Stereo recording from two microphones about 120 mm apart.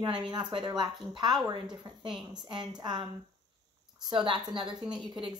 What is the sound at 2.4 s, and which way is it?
Speech, 40° right (ahead or behind).